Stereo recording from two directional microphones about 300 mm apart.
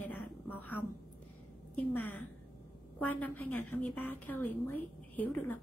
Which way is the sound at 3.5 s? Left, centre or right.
Left.